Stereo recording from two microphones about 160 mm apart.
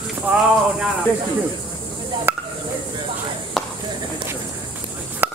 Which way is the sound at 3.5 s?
Centre (ahead or behind).